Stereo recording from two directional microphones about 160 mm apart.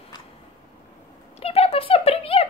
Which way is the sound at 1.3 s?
40° left (ahead or behind).